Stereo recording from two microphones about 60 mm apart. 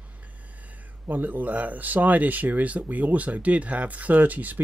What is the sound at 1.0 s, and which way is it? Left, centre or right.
Speech, right.